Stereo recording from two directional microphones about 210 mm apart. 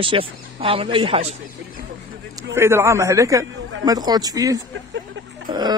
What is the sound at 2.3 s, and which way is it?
A man's voice, 10° right (ahead or behind).